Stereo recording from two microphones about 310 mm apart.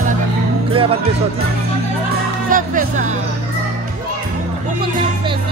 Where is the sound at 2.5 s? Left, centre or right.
Right.